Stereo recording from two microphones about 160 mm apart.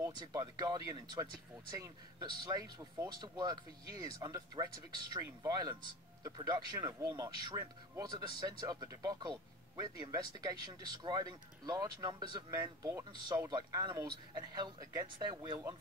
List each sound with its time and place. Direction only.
0.0 s speech: 25° right (ahead or behind)